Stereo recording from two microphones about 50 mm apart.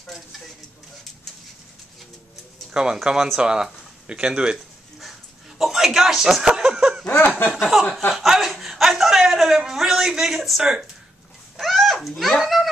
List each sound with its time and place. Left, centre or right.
2.7 s speech: centre
5.6 s speech: centre
7.1 s a sound: left
7.7 s a man's voice: centre
8.1 s chuckle: centre
9.7 s a man's voice: centre
11.6 s a sound: centre